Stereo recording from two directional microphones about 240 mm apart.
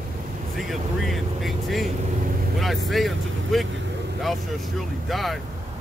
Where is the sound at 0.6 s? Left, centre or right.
Centre.